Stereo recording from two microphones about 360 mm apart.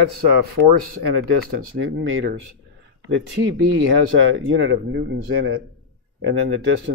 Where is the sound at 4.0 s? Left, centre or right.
Right.